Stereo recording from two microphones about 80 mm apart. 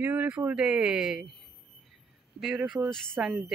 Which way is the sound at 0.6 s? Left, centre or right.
Centre.